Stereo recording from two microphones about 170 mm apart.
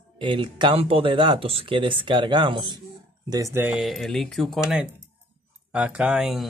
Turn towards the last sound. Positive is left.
turn(degrees=0)  # may be behind; listen again after turning